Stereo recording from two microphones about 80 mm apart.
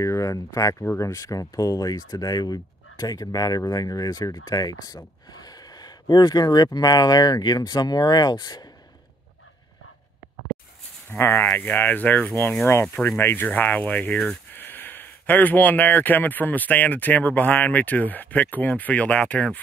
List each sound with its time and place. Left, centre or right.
0.0 s speech: left
11.1 s speech: left